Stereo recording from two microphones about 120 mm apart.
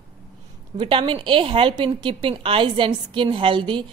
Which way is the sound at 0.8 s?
45° right (ahead or behind).